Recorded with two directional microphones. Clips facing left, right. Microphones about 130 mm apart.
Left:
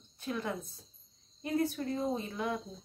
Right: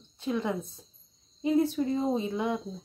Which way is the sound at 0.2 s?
20° right (ahead or behind).